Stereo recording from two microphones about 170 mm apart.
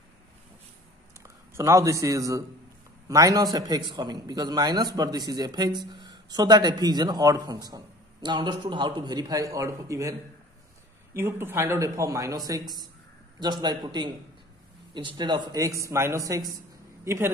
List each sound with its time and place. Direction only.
1.2 s a man's voice: 15° right (ahead or behind)
11.1 s a man's voice: 15° right (ahead or behind)